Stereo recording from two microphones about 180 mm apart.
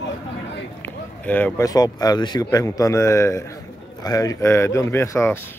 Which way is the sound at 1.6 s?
20° left (ahead or behind).